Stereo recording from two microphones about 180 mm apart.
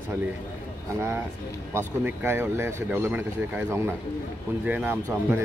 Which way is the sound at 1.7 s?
15° right (ahead or behind).